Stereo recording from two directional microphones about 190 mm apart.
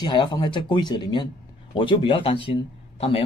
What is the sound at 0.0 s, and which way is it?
Speech, 25° left (ahead or behind).